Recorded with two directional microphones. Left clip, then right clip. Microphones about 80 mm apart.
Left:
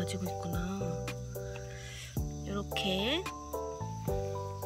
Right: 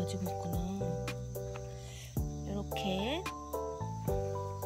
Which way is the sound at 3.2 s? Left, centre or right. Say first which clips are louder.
Even; centre.